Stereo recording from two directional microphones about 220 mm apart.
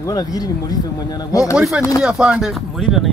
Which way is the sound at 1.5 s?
5° right (ahead or behind).